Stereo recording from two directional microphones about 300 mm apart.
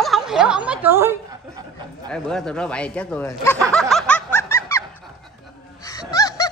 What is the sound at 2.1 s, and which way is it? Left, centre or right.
Speech, centre.